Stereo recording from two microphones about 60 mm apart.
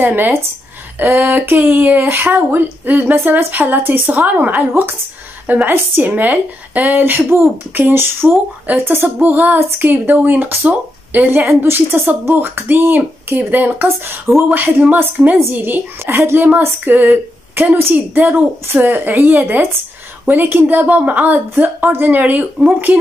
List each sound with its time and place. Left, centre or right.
0.0 s speech: right
16.1 s speech: right
16.6 s a woman's voice: right